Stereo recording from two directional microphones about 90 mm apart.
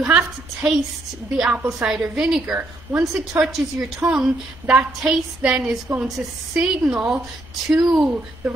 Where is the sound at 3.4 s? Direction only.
5° right (ahead or behind).